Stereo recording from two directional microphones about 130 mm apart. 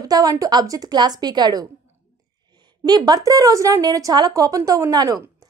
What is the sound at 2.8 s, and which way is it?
A woman's voice, 30° right (ahead or behind).